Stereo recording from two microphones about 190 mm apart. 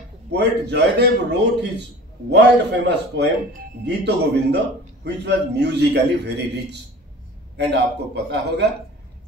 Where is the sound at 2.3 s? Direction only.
65° right (ahead or behind).